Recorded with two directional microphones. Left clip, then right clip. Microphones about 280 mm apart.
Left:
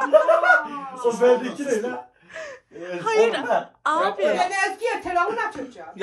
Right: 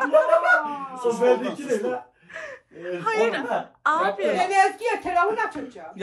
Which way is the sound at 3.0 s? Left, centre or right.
Centre.